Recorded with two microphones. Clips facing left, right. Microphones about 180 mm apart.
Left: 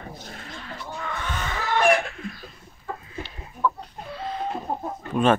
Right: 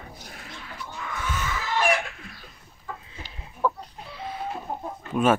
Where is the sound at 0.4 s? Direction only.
5° right (ahead or behind).